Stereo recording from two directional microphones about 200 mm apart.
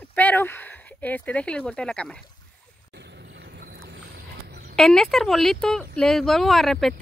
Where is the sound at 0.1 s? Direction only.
10° left (ahead or behind).